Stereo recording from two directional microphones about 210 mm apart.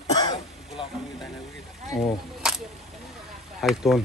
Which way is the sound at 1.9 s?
Centre (ahead or behind).